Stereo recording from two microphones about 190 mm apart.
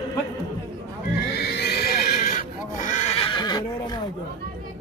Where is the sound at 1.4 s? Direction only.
60° left (ahead or behind); by 4.0 s 20° left (ahead or behind).